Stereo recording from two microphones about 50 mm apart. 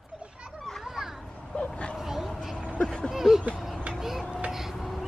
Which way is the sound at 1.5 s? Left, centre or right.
Left.